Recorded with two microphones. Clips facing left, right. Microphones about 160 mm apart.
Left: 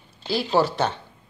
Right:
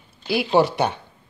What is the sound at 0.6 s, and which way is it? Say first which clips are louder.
Speech: right 3 dB; 15° right (ahead or behind).